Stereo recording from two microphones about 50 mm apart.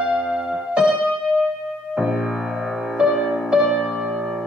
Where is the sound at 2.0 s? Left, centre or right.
Centre.